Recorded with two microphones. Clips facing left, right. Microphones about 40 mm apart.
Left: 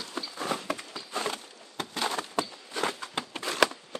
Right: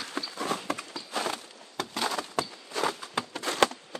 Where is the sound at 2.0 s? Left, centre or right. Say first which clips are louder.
Left 1 dB; left.